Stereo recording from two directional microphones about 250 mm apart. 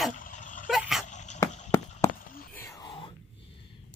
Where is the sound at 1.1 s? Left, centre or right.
Left.